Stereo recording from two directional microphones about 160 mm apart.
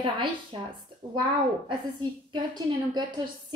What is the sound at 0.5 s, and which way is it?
Speech, 30° right (ahead or behind).